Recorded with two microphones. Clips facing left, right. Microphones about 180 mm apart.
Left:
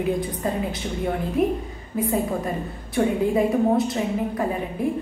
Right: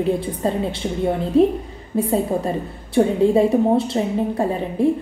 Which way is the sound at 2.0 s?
30° right (ahead or behind).